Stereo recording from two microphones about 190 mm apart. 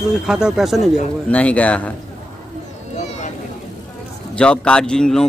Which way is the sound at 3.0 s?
35° left (ahead or behind).